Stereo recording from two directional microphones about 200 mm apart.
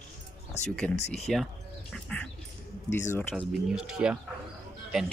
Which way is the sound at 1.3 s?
Centre (ahead or behind).